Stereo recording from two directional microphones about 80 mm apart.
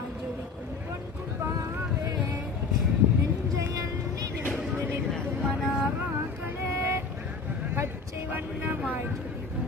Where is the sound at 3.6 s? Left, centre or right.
Right.